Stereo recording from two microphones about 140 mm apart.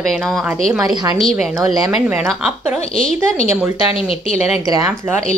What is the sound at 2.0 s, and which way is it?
Speech, 5° right (ahead or behind).